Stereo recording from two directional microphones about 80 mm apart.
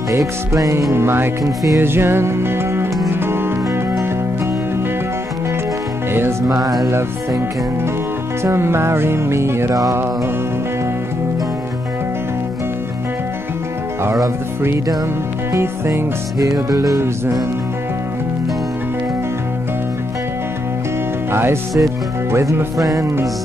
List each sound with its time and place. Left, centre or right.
0.5 s music: right
6.4 s music: right
6.9 s music: right
15.5 s music: right
21.3 s speech: right
21.7 s music: right